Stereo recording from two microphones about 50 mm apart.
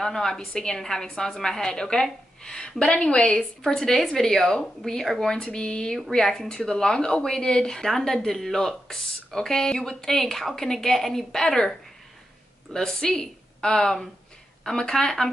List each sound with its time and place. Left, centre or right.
0.0 s a woman's voice: centre
3.3 s speech: centre
12.7 s a woman's voice: centre